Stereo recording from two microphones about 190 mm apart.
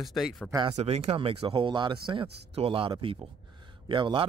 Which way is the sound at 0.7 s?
35° right (ahead or behind).